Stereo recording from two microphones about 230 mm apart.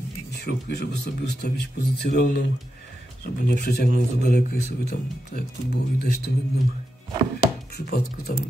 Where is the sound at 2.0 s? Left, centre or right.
Left.